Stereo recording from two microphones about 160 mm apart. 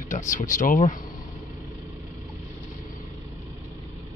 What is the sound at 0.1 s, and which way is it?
Speech, 50° left (ahead or behind).